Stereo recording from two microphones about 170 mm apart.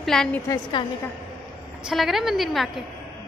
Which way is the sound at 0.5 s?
25° left (ahead or behind).